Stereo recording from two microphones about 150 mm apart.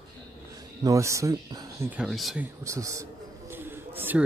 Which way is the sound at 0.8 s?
20° right (ahead or behind).